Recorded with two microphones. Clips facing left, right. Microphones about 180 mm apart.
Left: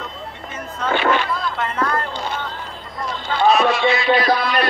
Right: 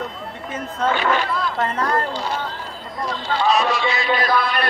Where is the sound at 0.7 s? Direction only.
40° right (ahead or behind).